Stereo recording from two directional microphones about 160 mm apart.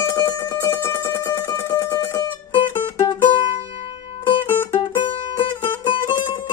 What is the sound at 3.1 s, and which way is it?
Music, 30° left (ahead or behind).